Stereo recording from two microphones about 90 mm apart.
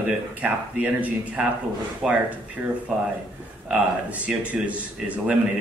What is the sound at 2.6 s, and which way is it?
Speech, 20° right (ahead or behind).